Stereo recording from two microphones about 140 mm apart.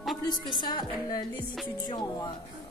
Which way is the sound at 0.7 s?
30° left (ahead or behind).